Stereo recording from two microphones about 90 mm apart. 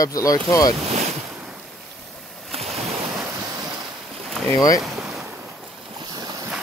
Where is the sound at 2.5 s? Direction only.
90° right.